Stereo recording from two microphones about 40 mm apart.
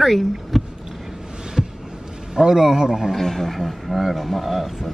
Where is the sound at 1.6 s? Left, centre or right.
Centre.